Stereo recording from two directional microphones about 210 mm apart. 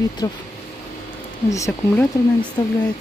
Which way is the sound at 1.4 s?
15° left (ahead or behind).